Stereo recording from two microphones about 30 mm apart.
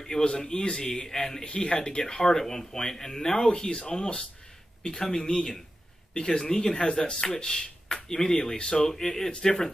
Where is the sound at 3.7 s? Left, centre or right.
Left.